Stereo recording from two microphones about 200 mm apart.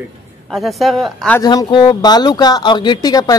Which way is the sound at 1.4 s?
20° left (ahead or behind).